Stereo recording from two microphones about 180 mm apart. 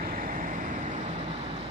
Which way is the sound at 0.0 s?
50° right (ahead or behind).